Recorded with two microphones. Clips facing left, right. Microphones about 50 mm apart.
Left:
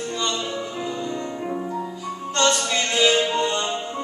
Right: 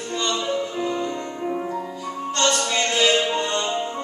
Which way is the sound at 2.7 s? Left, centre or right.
Centre.